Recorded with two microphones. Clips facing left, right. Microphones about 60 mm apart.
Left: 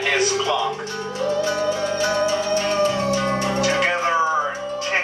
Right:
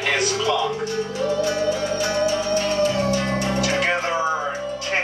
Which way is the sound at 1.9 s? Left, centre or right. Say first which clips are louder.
Left 1 dB; left.